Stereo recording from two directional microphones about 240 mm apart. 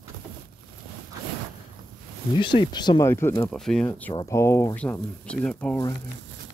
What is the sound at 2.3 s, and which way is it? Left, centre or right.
Speech, centre.